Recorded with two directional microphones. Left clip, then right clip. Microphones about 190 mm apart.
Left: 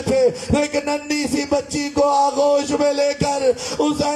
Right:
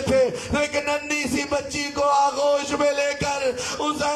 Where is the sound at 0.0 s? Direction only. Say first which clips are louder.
Left 3 dB; 25° left (ahead or behind).